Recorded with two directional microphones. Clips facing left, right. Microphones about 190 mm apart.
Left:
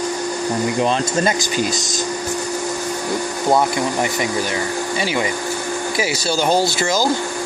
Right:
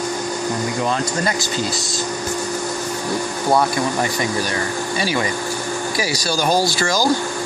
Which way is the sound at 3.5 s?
20° left (ahead or behind).